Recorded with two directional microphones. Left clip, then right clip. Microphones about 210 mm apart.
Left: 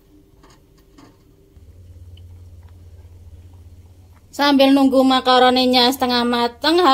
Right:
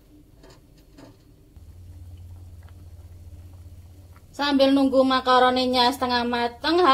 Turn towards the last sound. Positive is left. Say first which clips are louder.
# left 4 dB
turn(degrees=50)  # may be behind; listen again after turning